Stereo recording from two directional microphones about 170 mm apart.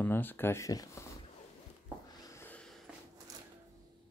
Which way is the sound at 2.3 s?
10° left (ahead or behind).